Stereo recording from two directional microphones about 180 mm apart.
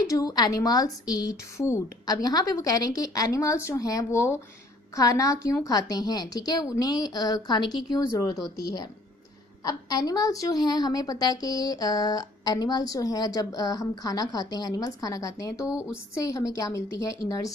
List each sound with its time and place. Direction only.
0.0 s a woman's voice: 20° left (ahead or behind)